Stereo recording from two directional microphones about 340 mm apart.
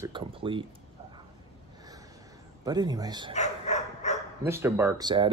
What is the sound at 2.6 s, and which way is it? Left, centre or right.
Speech, centre.